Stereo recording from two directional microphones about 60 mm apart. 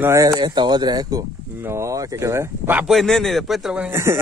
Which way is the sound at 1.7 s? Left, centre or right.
Right.